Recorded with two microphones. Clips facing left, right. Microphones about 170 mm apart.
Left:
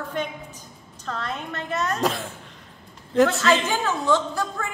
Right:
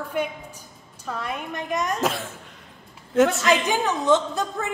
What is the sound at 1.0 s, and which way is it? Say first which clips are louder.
Speech: even; 10° right (ahead or behind).